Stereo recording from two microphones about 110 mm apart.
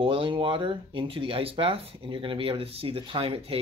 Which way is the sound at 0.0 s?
55° right (ahead or behind).